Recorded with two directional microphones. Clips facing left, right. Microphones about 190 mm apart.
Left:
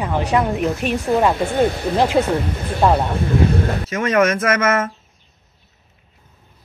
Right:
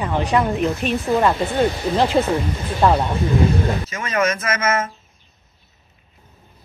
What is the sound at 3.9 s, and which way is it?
Speech, 65° left (ahead or behind).